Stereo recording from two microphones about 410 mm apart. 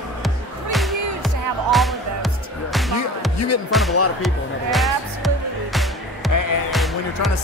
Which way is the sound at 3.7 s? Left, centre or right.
Centre.